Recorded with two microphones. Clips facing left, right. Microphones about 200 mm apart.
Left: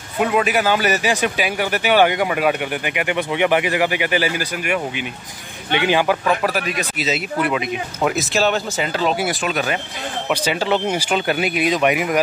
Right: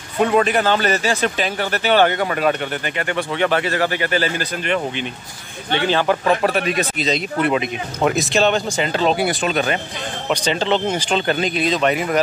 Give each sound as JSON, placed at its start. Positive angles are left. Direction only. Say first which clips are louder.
{"t": 0.2, "sound": "a man's voice", "louder": "right 2 dB", "side_deg": 5}
{"t": 6.2, "sound": "speech", "louder": "right 2 dB", "side_deg": -30}
{"t": 7.0, "sound": "a man's voice", "louder": "right 1 dB", "side_deg": 5}
{"t": 9.4, "sound": "speech", "louder": "right 2 dB", "side_deg": -30}
{"t": 10.3, "sound": "a man's voice", "louder": "right 1 dB", "side_deg": 10}